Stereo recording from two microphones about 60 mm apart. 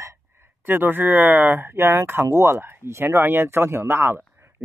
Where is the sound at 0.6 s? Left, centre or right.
Right.